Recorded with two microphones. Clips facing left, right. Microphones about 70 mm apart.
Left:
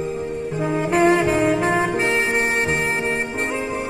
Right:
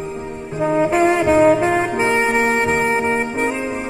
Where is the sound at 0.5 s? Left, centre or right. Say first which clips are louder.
Right 4 dB; centre.